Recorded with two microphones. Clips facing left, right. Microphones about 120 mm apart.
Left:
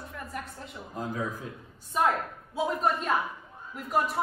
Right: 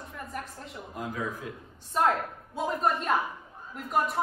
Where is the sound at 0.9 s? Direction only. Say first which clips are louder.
Left 1 dB; 35° left (ahead or behind).